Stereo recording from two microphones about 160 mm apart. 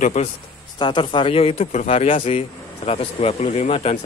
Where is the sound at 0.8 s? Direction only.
30° left (ahead or behind).